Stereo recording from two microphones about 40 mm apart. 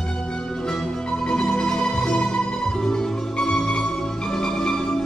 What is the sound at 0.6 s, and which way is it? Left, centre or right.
Music, centre.